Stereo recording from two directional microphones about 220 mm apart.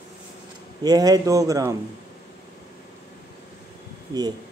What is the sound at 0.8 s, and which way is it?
Speech, 15° right (ahead or behind).